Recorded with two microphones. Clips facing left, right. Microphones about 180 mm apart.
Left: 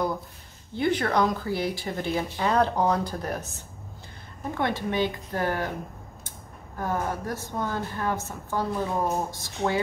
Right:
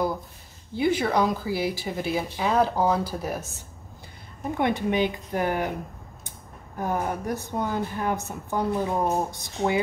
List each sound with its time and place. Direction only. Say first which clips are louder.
0.7 s a woman's voice: right 1 dB; 5° right (ahead or behind)
4.6 s a woman's voice: right 3 dB; 15° right (ahead or behind)
6.8 s a woman's voice: right 1 dB; 15° right (ahead or behind)